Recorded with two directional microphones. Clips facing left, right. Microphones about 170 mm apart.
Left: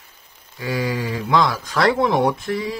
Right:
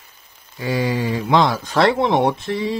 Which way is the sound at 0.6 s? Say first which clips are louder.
Right 3 dB; 25° right (ahead or behind).